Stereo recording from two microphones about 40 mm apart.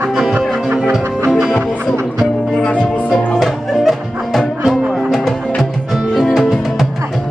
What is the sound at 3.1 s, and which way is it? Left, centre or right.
Music, centre.